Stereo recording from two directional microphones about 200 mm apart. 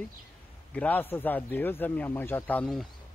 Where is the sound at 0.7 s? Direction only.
10° left (ahead or behind).